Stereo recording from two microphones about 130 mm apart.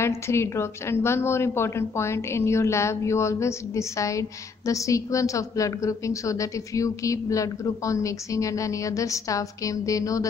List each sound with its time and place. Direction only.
0.0 s a woman's voice: 20° left (ahead or behind)